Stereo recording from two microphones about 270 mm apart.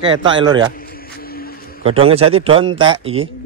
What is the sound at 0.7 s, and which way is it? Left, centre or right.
Music, left.